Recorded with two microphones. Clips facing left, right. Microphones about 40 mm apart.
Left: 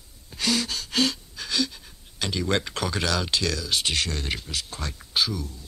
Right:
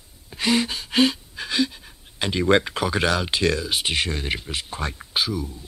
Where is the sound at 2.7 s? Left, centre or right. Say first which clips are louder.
Right 5 dB; centre.